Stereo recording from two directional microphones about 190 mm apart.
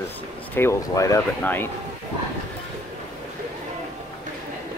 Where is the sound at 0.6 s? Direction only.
15° left (ahead or behind).